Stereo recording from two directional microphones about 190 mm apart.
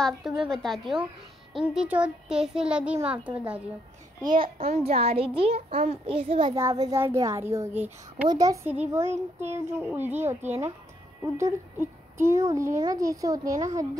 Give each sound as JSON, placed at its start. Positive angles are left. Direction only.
{"t": 0.0, "sound": "a child's voice", "side_deg": 0}
{"t": 4.4, "sound": "a child's voice", "side_deg": -30}
{"t": 6.5, "sound": "speech", "side_deg": -15}
{"t": 11.3, "sound": "speech", "side_deg": -15}